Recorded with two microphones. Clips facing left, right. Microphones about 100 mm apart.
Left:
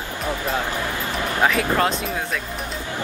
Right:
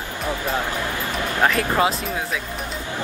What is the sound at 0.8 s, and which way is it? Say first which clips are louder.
Music: even; 20° left (ahead or behind).